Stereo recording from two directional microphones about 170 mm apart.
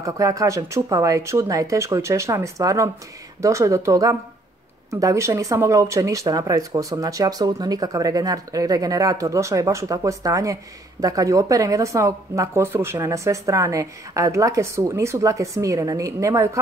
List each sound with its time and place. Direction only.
0.0 s speech: 20° right (ahead or behind)